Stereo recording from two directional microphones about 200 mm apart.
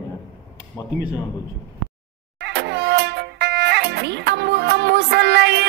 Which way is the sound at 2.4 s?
60° right (ahead or behind).